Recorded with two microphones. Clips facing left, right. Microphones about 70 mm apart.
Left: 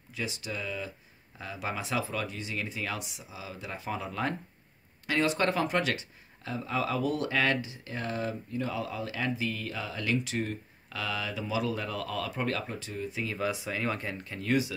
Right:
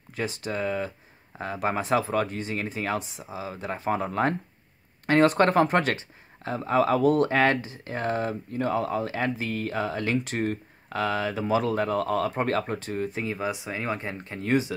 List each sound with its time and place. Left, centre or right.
0.1 s speech: right
13.2 s speech: right